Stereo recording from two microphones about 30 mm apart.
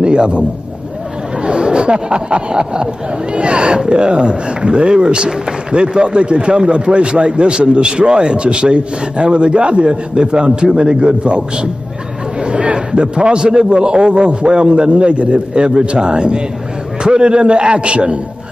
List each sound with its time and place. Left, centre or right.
0.0 s a man's voice: right
12.4 s chatter: right
12.7 s speech: right